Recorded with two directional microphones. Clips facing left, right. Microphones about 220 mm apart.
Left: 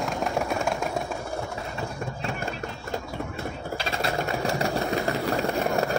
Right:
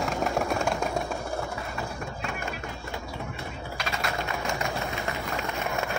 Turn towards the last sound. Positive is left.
turn(degrees=40)  # may be behind; listen again after turning